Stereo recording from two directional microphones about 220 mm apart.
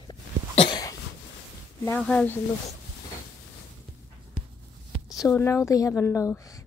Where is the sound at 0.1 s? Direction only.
20° left (ahead or behind).